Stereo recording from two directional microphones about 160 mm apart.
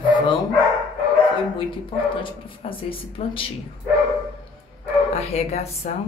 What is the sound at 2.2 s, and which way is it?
Speech, 35° left (ahead or behind).